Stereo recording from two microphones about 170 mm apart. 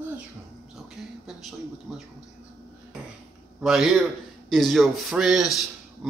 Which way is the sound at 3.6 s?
Centre (ahead or behind).